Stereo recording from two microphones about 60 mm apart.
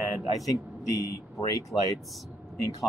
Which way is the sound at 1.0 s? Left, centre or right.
Left.